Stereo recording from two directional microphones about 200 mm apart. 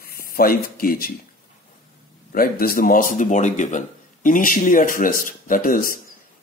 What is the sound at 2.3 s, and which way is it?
Speech, 50° left (ahead or behind).